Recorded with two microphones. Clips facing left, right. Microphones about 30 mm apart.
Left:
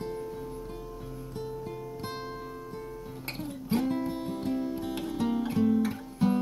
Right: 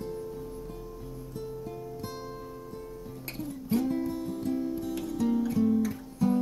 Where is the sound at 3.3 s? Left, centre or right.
Left.